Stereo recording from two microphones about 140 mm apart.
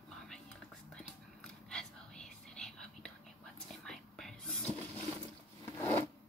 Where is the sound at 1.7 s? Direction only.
5° left (ahead or behind).